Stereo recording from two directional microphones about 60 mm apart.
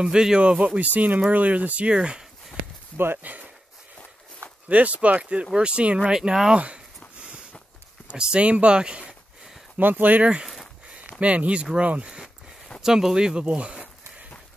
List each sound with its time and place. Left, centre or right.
0.0 s speech: centre
3.0 s speech: right
4.6 s speech: right
7.2 s a sound: right
8.1 s speech: centre
9.8 s speech: right
12.8 s speech: centre